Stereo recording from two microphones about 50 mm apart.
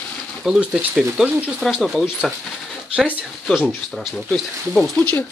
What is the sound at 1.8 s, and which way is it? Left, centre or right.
Speech, centre.